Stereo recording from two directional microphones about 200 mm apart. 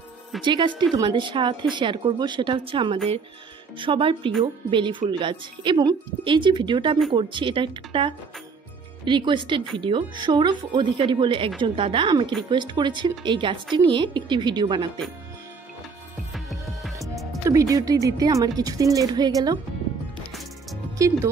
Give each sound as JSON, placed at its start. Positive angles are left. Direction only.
{"t": 0.4, "sound": "a woman's voice", "side_deg": -25}
{"t": 16.3, "sound": "music", "side_deg": 0}
{"t": 17.5, "sound": "speech", "side_deg": -15}
{"t": 21.0, "sound": "speech", "side_deg": -15}